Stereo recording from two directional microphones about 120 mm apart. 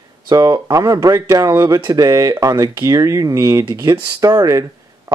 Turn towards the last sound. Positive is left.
turn(degrees=-30)  # may be behind; listen again after turning